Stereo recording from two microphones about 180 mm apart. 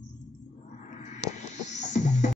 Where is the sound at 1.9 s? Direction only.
40° left (ahead or behind).